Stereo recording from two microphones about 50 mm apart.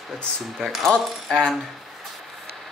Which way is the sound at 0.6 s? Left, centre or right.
Centre.